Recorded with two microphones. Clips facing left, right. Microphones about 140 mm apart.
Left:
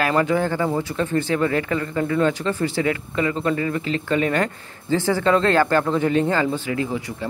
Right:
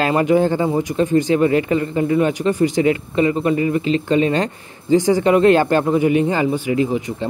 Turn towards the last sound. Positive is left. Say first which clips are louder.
# right 6 dB
turn(degrees=-20)  # may be behind; listen again after turning